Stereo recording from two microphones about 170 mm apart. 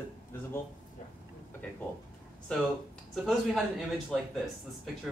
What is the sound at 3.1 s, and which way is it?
Speech, centre (ahead or behind).